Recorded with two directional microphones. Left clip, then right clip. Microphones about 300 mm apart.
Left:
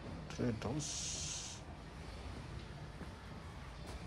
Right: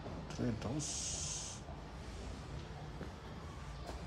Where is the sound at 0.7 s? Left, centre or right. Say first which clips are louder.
Right 1 dB; centre.